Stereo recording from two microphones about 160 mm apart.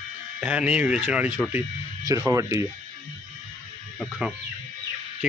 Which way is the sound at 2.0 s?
20° right (ahead or behind).